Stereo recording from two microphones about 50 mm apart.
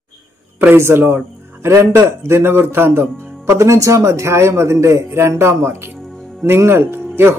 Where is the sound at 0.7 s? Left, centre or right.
Right.